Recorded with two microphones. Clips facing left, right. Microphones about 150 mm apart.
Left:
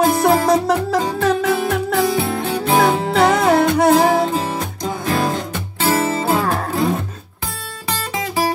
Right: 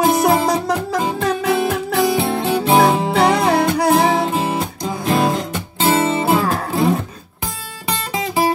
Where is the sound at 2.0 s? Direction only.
25° right (ahead or behind).